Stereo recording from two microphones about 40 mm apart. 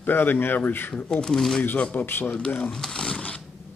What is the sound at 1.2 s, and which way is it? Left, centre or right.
Speech, centre.